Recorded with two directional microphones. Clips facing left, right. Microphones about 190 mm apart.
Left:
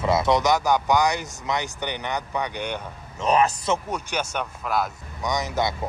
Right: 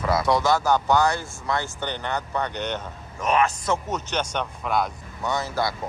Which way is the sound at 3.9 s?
10° left (ahead or behind).